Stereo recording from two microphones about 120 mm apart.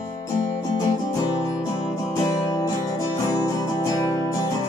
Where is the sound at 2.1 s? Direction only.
30° left (ahead or behind).